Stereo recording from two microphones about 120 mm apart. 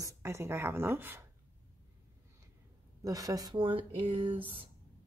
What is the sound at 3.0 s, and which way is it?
Speech, 30° right (ahead or behind).